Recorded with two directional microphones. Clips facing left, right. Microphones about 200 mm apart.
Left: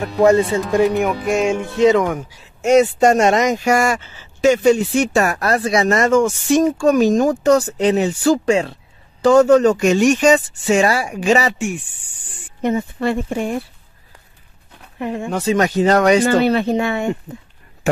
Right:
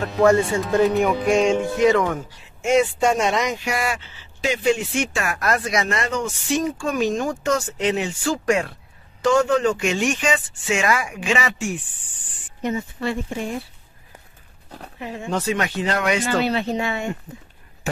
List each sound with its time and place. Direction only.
0.0 s speech: 15° left (ahead or behind)
0.8 s music: centre (ahead or behind)
1.8 s speech: 20° left (ahead or behind)
2.6 s speech: 40° left (ahead or behind)
8.5 s speech: 25° left (ahead or behind)
9.2 s speech: 40° left (ahead or behind)
12.6 s speech: 55° left (ahead or behind)
15.0 s speech: 55° left (ahead or behind)
15.4 s speech: 40° left (ahead or behind)